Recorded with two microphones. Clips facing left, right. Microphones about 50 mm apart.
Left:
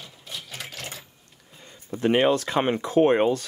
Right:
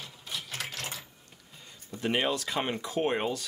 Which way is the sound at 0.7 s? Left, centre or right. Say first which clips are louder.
Left 1 dB; centre.